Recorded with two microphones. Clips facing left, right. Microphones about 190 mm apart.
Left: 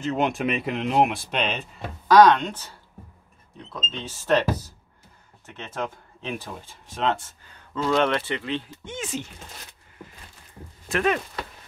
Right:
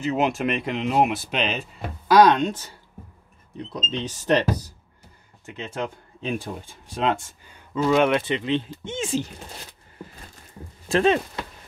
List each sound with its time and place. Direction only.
0.0 s speech: 5° right (ahead or behind)
3.7 s speech: 15° right (ahead or behind)
10.9 s speech: 30° right (ahead or behind)